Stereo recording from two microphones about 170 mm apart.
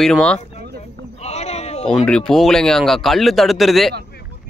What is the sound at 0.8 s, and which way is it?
Sheep, 40° left (ahead or behind).